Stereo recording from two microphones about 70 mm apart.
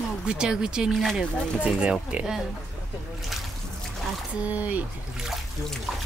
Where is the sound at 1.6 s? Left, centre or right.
Centre.